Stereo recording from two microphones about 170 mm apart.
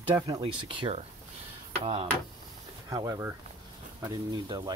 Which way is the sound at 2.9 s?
20° right (ahead or behind).